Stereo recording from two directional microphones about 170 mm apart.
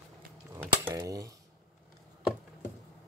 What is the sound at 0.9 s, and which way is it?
Typewriter, 20° right (ahead or behind).